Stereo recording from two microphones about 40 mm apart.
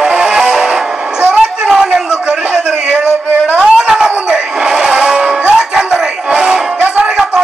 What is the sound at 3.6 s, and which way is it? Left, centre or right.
Dog, centre.